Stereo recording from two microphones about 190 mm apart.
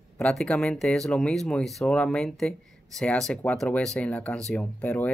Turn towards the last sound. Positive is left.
turn(degrees=10)  # may be behind; listen again after turning